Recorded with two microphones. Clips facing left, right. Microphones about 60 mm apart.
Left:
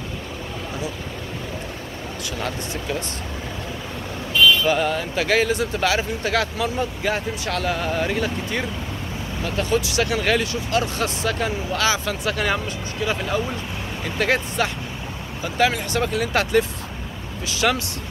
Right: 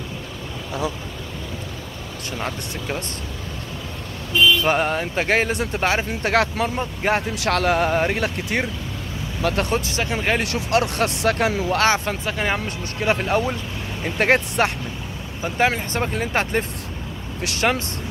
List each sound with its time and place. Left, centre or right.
4.6 s speech: right
5.5 s speech: right
5.8 s speech: right
9.4 s speech: right
9.7 s speech: right
10.0 s speech: right
10.4 s speech: right
12.3 s speech: centre
12.6 s speech: right
14.0 s speech: right
15.4 s speech: right